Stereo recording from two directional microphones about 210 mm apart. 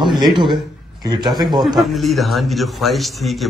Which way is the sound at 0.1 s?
20° right (ahead or behind).